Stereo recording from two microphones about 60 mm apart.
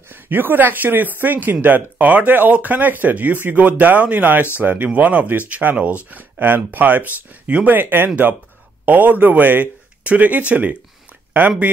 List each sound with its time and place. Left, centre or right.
0.1 s speech: right